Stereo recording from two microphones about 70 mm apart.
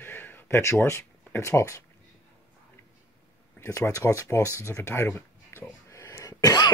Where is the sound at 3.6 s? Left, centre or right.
Left.